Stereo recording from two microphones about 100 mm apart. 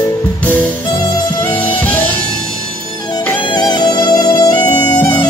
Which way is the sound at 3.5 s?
45° left (ahead or behind).